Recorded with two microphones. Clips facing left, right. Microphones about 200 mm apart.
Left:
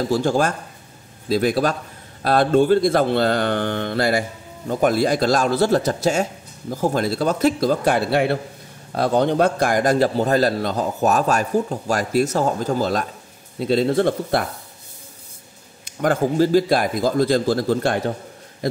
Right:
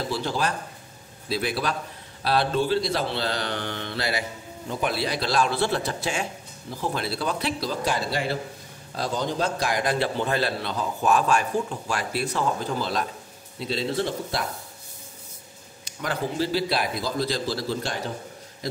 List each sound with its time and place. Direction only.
0.0 s a man's voice: 45° left (ahead or behind)
15.8 s a man's voice: 50° left (ahead or behind)